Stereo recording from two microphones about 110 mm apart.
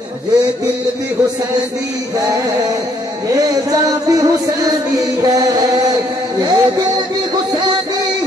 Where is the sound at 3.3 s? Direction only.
35° right (ahead or behind).